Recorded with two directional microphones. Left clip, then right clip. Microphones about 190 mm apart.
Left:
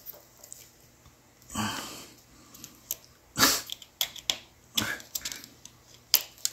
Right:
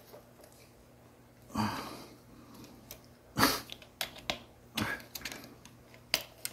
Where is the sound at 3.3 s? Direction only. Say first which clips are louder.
Left 4 dB; 15° right (ahead or behind).